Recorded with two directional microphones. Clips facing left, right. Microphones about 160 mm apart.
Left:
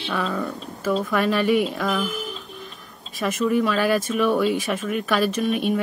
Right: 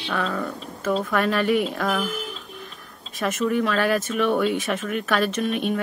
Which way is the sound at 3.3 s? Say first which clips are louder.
Left 2 dB; 50° right (ahead or behind).